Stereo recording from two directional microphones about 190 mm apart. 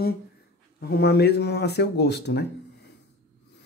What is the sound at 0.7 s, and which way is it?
Speech, 55° left (ahead or behind).